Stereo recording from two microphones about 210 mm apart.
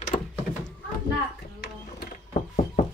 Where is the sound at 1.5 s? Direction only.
50° left (ahead or behind).